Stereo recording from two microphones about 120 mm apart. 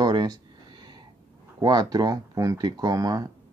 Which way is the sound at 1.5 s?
35° right (ahead or behind).